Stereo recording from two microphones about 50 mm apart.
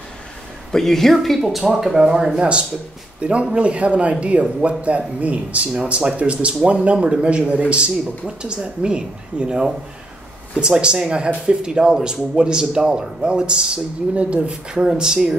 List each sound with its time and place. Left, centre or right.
0.7 s a woman's voice: centre